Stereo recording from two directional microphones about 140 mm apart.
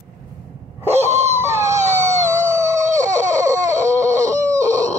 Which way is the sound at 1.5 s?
20° right (ahead or behind).